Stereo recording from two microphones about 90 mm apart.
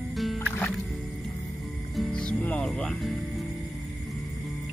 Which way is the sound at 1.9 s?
5° left (ahead or behind).